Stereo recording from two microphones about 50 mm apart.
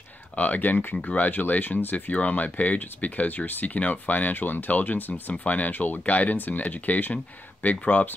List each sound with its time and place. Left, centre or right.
0.4 s speech: left